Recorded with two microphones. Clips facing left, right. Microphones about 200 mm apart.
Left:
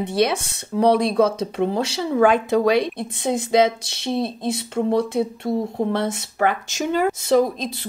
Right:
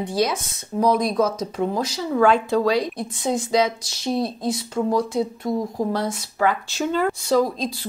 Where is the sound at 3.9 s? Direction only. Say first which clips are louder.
Even; 25° left (ahead or behind).